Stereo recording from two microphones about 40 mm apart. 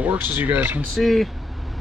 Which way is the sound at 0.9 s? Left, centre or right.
Centre.